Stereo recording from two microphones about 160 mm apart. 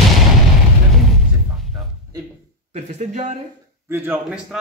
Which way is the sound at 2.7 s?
45° right (ahead or behind).